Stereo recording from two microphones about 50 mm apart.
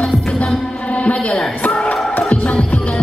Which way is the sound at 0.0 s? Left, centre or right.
Centre.